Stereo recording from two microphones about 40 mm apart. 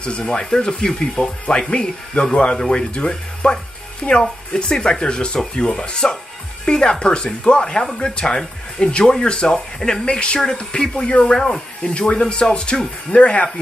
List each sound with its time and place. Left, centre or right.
0.2 s speech: centre
11.1 s speech: left
11.3 s speech: centre
11.8 s speech: left